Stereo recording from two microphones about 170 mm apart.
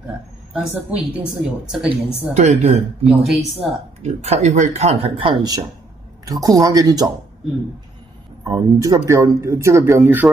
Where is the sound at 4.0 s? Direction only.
40° right (ahead or behind); by 7.1 s 20° right (ahead or behind).